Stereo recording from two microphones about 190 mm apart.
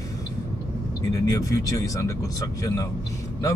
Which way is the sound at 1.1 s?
20° left (ahead or behind).